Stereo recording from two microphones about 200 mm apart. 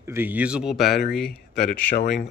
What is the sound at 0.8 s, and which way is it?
Speech, 55° left (ahead or behind).